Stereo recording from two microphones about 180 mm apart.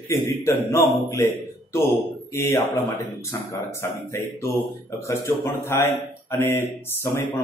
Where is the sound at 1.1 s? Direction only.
15° left (ahead or behind).